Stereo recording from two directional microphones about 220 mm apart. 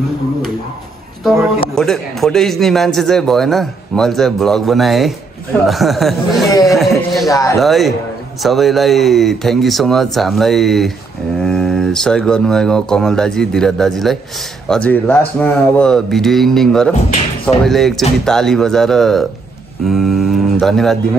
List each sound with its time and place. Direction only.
1.8 s a man's voice: centre (ahead or behind)
6.7 s a sound: centre (ahead or behind)
7.2 s speech: 15° left (ahead or behind)
7.5 s a man's voice: centre (ahead or behind)